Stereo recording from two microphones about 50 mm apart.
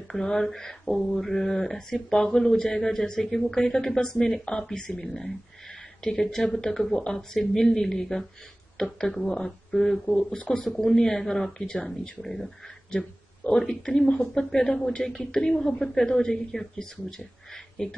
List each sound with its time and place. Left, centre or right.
0.1 s speech: centre
10.3 s speech: left
13.5 s speech: centre